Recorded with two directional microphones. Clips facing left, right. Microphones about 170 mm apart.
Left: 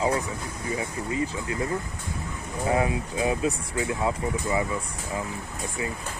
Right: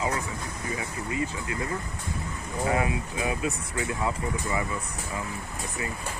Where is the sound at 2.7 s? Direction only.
30° left (ahead or behind).